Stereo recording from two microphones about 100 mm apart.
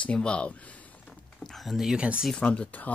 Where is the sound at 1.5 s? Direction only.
Centre (ahead or behind).